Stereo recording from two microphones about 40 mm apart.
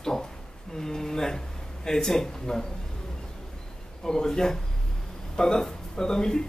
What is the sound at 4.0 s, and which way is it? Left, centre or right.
Speech, centre.